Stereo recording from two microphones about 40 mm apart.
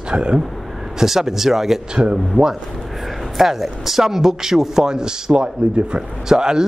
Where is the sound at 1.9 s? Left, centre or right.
Centre.